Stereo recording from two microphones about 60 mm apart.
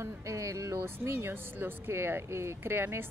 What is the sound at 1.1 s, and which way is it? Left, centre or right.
Speech, right.